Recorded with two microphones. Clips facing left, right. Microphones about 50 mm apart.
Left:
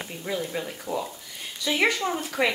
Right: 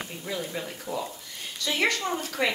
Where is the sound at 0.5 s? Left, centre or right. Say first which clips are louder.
Left 3 dB; centre.